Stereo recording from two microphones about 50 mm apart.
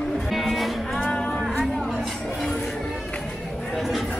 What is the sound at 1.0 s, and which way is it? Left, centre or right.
Cattle, centre.